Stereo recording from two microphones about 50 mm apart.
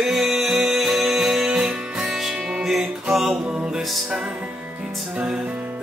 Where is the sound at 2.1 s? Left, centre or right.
Centre.